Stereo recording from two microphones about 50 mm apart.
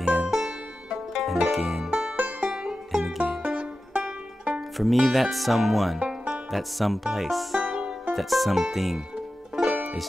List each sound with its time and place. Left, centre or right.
0.0 s music: centre
1.9 s music: right
2.4 s music: centre
3.4 s music: right
4.6 s speech: centre
5.9 s music: right
6.3 s speech: centre
7.6 s music: right
8.1 s speech: centre